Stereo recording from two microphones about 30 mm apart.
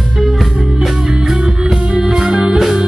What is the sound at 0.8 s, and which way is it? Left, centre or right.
Music, centre.